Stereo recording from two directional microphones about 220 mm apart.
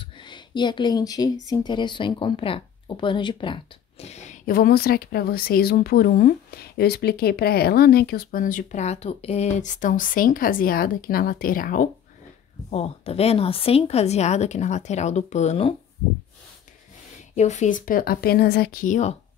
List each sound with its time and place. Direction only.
0.0 s a woman's voice: 20° left (ahead or behind)
17.4 s speech: 30° left (ahead or behind)